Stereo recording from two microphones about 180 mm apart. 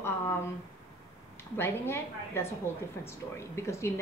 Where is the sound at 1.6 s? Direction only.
15° left (ahead or behind).